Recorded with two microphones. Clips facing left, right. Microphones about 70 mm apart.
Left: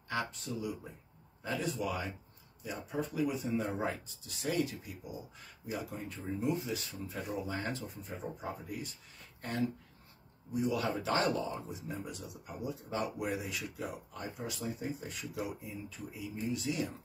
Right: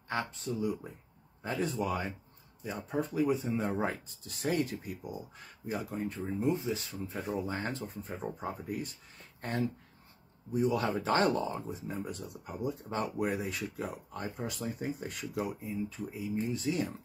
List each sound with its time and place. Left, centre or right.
0.1 s speech: right
3.6 s speech: right
16.1 s speech: right